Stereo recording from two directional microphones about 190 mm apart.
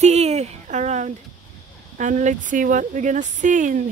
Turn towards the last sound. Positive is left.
turn(degrees=-40)  # may be behind; listen again after turning